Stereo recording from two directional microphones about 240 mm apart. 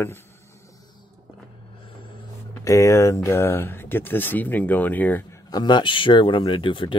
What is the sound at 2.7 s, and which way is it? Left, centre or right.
Speech, centre.